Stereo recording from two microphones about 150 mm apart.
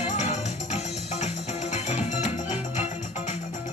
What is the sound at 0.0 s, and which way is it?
Music, 50° left (ahead or behind).